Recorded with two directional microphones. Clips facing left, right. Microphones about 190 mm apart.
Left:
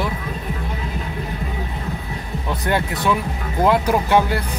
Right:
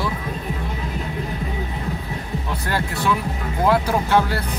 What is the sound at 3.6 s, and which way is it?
Speech, 15° left (ahead or behind).